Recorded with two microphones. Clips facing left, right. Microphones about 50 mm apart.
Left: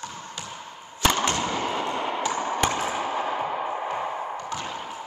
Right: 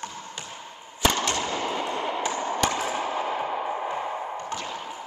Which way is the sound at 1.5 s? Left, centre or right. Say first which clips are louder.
Left 1 dB; centre.